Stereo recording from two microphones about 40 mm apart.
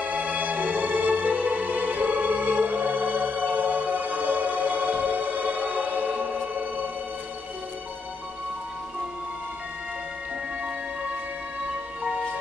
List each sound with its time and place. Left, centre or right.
0.0 s music: right
11.6 s music: right